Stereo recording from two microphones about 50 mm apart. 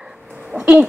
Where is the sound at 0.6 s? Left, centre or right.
Right.